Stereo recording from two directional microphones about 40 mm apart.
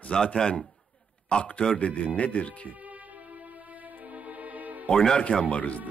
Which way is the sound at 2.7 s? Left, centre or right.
Right.